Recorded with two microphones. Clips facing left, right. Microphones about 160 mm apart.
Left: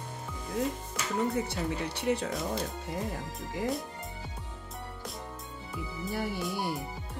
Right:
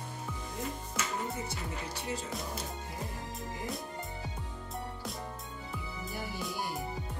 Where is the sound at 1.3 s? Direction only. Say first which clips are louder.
Left 7 dB; 70° left (ahead or behind).